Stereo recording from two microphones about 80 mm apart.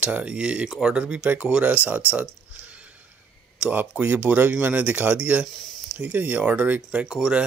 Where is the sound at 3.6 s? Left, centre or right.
Centre.